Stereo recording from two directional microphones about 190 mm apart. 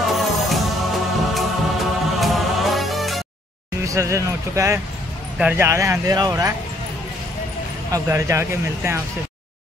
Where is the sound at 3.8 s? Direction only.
15° right (ahead or behind).